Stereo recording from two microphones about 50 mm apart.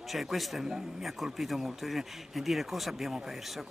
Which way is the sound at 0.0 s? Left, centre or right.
Centre.